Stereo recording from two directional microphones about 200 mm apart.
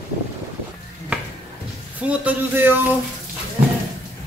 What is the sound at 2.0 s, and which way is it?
Speech, 5° right (ahead or behind).